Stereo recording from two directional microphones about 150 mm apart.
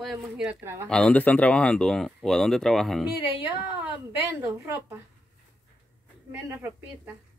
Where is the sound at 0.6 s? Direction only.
15° right (ahead or behind).